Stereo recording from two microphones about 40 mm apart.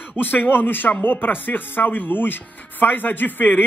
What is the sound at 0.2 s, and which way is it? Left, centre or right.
Speech, left.